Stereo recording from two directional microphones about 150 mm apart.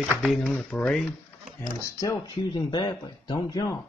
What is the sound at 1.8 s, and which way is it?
Speech, 20° left (ahead or behind).